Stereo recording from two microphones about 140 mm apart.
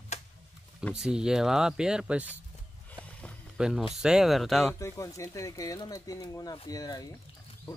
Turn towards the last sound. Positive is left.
turn(degrees=25)  # may be behind; listen again after turning